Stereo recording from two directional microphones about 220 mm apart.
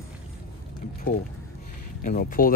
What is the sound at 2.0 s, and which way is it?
Speech, 40° left (ahead or behind).